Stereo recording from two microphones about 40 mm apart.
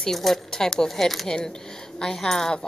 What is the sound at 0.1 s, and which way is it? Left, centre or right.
A woman's voice, centre.